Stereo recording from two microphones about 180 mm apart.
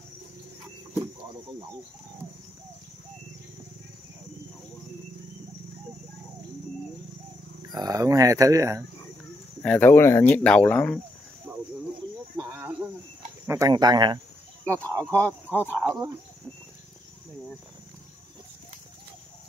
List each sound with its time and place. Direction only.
7.7 s speech: 20° right (ahead or behind)
9.6 s speech: 10° left (ahead or behind)
12.4 s cricket: 15° right (ahead or behind)
13.5 s speech: 20° right (ahead or behind)
14.6 s speech: 10° left (ahead or behind)
15.5 s speech: 10° right (ahead or behind)